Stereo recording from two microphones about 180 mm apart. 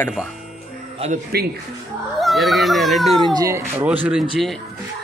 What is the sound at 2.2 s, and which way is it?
A child's voice, centre (ahead or behind).